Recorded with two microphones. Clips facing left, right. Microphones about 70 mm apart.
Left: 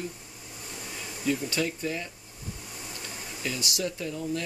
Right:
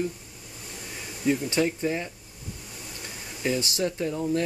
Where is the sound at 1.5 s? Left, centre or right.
Right.